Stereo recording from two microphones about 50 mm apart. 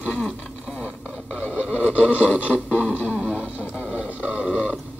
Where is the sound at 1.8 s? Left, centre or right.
Left.